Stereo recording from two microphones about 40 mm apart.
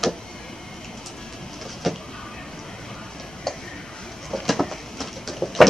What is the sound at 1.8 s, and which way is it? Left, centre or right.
Vehicle, centre.